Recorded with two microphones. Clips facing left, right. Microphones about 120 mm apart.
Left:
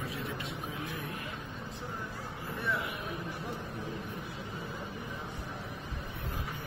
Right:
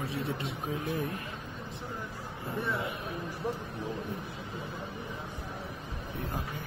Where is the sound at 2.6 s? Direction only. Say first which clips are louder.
Right 2 dB; 25° right (ahead or behind).